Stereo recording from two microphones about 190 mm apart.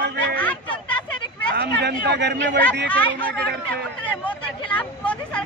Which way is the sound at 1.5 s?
60° right (ahead or behind).